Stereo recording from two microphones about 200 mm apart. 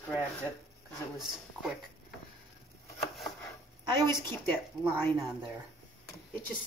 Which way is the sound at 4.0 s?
10° left (ahead or behind).